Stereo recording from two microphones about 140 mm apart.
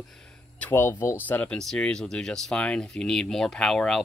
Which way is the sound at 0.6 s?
15° left (ahead or behind).